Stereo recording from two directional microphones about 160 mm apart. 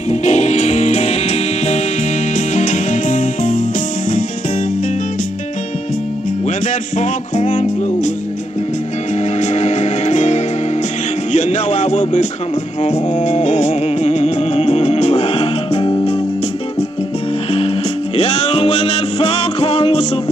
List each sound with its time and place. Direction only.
0.1 s music: 45° left (ahead or behind)
7.0 s music: 50° left (ahead or behind)
9.4 s music: 45° left (ahead or behind)
17.5 s music: 35° left (ahead or behind)